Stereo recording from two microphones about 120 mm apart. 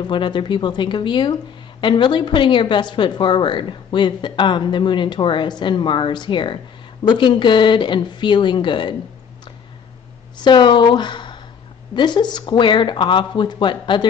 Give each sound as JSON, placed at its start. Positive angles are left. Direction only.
{"t": 0.0, "sound": "speech", "side_deg": 40}
{"t": 10.4, "sound": "speech", "side_deg": 40}